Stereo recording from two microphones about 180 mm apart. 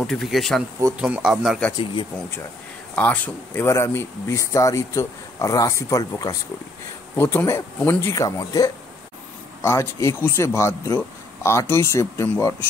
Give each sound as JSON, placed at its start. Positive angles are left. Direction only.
{"t": 0.0, "sound": "speech", "side_deg": 0}
{"t": 3.0, "sound": "speech", "side_deg": 10}